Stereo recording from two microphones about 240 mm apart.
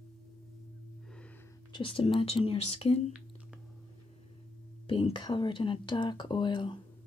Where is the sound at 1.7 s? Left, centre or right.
Left.